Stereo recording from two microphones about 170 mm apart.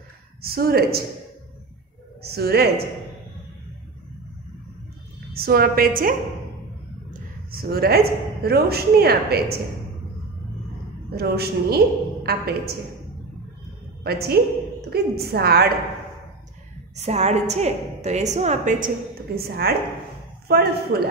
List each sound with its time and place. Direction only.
0.4 s a woman's voice: 65° right (ahead or behind)
2.2 s a woman's voice: 65° right (ahead or behind)
5.3 s a woman's voice: 60° right (ahead or behind)
7.1 s a sound: 65° right (ahead or behind)
8.4 s a woman's voice: 70° right (ahead or behind)
11.1 s a woman's voice: 70° right (ahead or behind)
14.0 s a woman's voice: 70° right (ahead or behind)
16.9 s a woman's voice: 40° right (ahead or behind)
19.3 s a woman's voice: 65° right (ahead or behind)